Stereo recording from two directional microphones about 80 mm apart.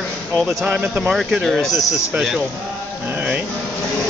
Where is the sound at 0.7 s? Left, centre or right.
Centre.